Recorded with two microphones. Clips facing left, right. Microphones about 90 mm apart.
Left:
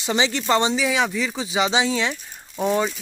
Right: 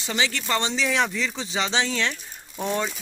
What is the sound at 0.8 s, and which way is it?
Speech, 5° left (ahead or behind).